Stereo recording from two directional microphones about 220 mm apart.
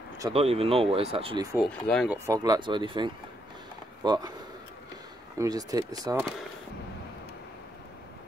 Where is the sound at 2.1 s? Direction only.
15° right (ahead or behind).